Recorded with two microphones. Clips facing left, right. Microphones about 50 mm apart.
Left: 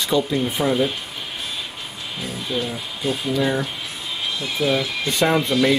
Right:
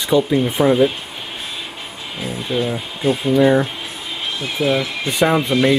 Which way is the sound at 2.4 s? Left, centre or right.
Right.